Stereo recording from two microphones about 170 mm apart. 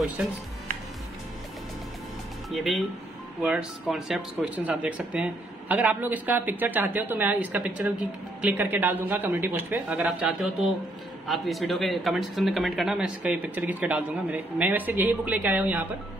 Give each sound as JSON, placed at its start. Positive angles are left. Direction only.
{"t": 2.5, "sound": "speech", "side_deg": 0}